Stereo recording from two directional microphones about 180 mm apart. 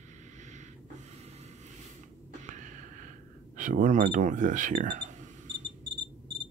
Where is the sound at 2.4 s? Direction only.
45° right (ahead or behind).